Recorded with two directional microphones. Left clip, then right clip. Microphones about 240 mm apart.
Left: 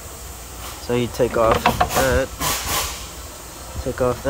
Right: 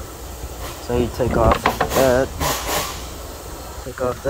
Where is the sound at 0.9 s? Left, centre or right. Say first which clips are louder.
Left 1 dB; left.